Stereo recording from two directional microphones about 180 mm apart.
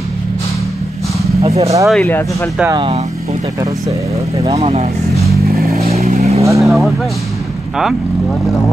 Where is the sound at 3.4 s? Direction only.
20° right (ahead or behind).